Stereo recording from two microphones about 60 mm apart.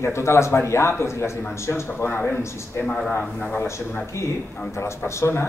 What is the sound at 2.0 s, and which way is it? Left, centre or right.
Speech, left.